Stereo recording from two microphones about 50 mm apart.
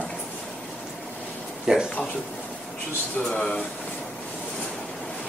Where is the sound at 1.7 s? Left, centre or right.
Centre.